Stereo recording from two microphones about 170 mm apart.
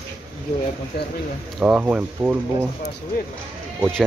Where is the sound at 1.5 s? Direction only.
5° right (ahead or behind).